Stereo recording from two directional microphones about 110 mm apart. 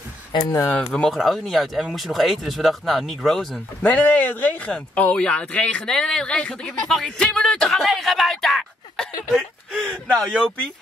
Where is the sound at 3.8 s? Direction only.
15° left (ahead or behind).